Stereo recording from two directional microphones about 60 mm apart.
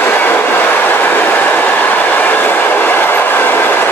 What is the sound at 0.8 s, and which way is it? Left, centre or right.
Train, left.